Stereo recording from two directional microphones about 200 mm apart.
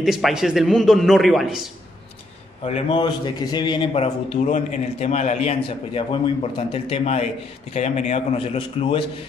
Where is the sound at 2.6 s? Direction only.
25° left (ahead or behind).